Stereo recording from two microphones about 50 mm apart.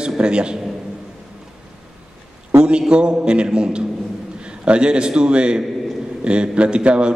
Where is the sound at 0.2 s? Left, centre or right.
Centre.